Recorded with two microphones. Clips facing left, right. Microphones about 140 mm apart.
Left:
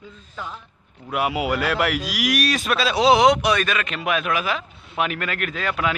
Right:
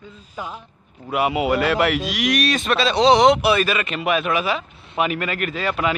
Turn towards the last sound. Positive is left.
turn(degrees=0)  # may be behind; listen again after turning